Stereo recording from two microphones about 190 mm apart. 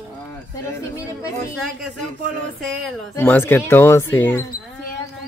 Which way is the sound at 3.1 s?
10° left (ahead or behind).